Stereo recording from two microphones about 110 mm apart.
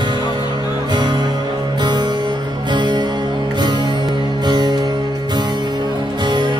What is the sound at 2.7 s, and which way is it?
Music, 45° right (ahead or behind).